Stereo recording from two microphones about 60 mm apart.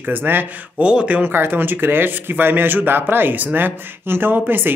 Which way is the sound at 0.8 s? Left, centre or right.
Right.